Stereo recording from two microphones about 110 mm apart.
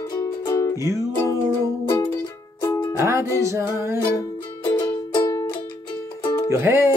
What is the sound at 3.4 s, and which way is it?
Speech, 25° right (ahead or behind).